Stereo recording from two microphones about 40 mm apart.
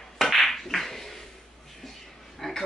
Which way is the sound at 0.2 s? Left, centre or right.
Centre.